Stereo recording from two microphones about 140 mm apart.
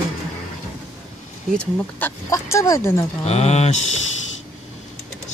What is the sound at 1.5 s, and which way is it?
Speech, 10° left (ahead or behind).